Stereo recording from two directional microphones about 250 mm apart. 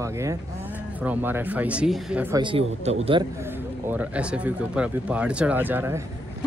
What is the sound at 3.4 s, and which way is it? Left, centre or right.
Speech, centre.